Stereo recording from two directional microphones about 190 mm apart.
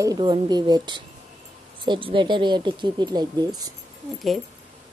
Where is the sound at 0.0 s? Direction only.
20° right (ahead or behind).